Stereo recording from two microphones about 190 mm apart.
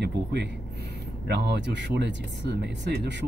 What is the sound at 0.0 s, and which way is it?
Speech, 65° right (ahead or behind).